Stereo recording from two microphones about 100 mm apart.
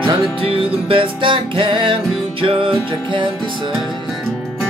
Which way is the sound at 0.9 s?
60° right (ahead or behind).